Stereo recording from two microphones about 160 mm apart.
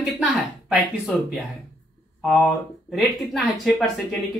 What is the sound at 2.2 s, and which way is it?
Speech, centre (ahead or behind).